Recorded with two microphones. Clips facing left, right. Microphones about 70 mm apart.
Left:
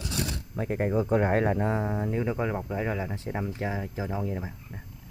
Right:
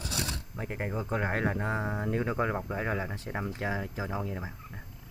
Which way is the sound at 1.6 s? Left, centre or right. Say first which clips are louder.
Left 4 dB; centre.